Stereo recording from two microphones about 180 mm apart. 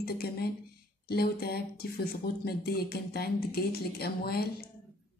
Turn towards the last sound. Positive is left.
turn(degrees=60)  # may be behind; listen again after turning